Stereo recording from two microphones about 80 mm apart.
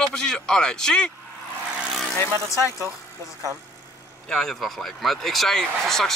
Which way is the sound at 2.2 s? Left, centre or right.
Left.